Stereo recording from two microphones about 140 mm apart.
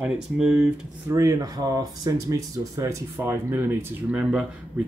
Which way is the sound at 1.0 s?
20° right (ahead or behind).